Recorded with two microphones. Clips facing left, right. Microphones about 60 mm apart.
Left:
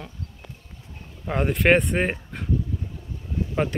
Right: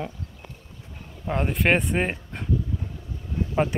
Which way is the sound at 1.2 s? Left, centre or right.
Centre.